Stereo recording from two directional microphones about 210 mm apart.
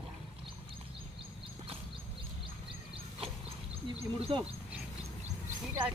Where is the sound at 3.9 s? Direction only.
30° right (ahead or behind).